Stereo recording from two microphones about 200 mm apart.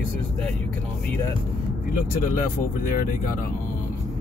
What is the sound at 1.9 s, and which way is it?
Speech, 45° left (ahead or behind).